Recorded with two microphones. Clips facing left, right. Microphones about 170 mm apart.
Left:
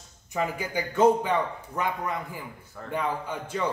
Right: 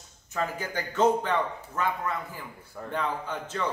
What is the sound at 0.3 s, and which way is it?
A man's voice, 10° left (ahead or behind).